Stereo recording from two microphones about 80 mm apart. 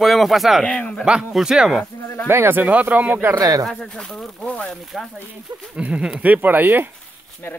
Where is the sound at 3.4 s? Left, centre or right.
Right.